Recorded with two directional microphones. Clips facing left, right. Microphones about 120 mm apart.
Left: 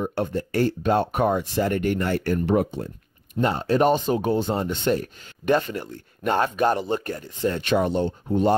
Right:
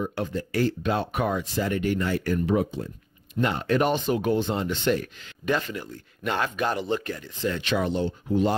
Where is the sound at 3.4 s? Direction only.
35° left (ahead or behind).